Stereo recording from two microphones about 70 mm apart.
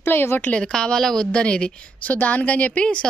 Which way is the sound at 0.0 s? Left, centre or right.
Left.